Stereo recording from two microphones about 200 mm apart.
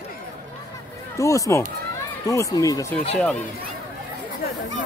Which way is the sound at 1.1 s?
15° left (ahead or behind).